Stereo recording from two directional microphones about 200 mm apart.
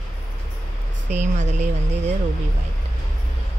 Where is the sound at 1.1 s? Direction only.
35° right (ahead or behind).